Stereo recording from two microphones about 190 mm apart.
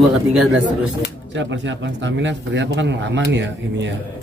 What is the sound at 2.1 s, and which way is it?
Speech, 70° right (ahead or behind).